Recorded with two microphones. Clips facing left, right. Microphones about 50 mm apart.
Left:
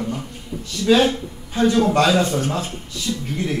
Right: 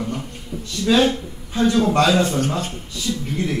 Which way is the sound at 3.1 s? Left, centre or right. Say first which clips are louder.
Right 1 dB; centre.